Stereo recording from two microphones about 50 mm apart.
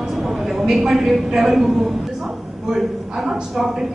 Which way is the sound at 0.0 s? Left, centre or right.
Centre.